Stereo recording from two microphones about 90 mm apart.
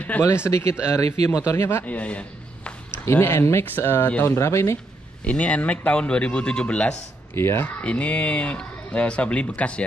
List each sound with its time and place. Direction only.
0.1 s speech: 15° left (ahead or behind)
0.5 s speech: 35° left (ahead or behind)
1.9 s a sound: 15° left (ahead or behind)
3.1 s speech: 30° left (ahead or behind)
5.2 s speech: 15° left (ahead or behind)
7.3 s speech: 25° left (ahead or behind)
7.8 s speech: 15° left (ahead or behind)